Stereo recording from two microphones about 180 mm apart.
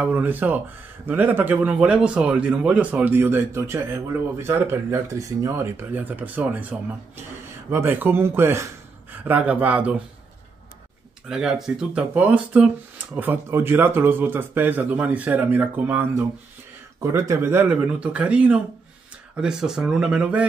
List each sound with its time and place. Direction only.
0.0 s speech: 10° right (ahead or behind)
11.2 s speech: 5° right (ahead or behind)